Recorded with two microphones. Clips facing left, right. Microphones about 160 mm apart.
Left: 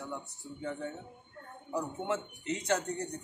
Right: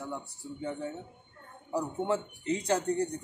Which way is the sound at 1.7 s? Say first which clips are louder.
Right 4 dB; 35° right (ahead or behind).